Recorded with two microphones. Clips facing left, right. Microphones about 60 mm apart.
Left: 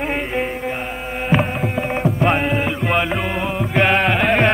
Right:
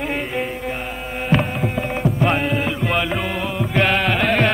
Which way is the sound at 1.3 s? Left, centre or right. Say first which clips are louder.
Left 1 dB; centre.